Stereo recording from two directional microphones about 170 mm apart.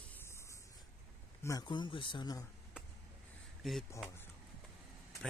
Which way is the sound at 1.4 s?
20° left (ahead or behind).